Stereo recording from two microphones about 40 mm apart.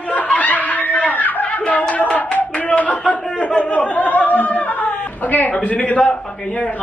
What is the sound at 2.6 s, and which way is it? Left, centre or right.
Clapping, left.